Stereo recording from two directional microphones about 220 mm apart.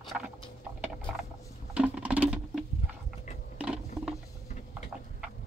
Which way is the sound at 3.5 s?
5° right (ahead or behind).